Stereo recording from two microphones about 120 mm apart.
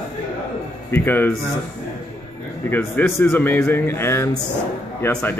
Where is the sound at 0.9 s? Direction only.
15° left (ahead or behind).